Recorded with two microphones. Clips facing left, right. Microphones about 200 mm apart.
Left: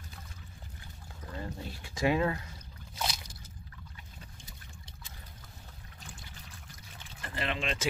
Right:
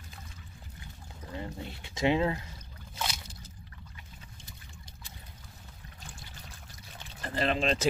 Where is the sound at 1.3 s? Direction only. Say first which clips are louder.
Right 1 dB; 20° right (ahead or behind).